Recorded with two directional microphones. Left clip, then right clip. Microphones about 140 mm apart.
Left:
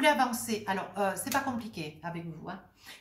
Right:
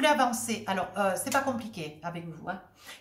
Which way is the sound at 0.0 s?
15° right (ahead or behind).